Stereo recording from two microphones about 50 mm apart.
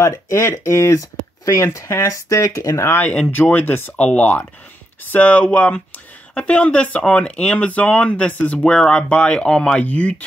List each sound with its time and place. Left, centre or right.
0.0 s speech: left
3.0 s speech: left
3.5 s speech: left
3.9 s speech: left
5.0 s speech: left